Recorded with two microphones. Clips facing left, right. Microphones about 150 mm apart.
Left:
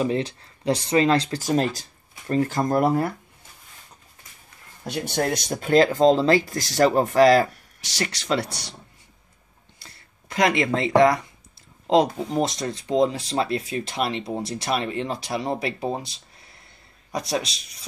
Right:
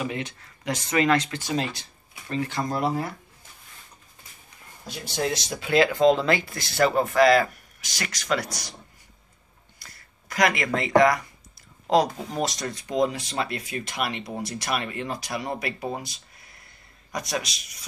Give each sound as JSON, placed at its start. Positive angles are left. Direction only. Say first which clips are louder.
{"t": 0.0, "sound": "speech", "louder": "left 7 dB", "side_deg": 30}
{"t": 4.8, "sound": "speech", "louder": "left 4 dB", "side_deg": 60}
{"t": 9.8, "sound": "a sound", "louder": "left 1 dB", "side_deg": 30}
{"t": 12.3, "sound": "speech", "louder": "left 4 dB", "side_deg": 25}